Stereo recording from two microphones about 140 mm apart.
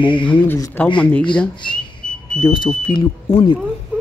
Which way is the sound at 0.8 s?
15° left (ahead or behind).